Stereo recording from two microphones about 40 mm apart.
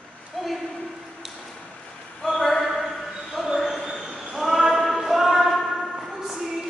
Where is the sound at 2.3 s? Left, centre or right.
Centre.